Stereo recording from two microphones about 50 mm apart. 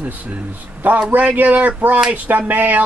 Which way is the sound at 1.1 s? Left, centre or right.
Right.